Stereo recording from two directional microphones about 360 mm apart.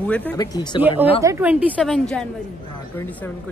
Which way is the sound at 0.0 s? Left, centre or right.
Centre.